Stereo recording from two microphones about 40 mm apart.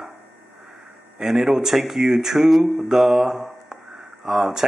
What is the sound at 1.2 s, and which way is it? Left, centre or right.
Speech, centre.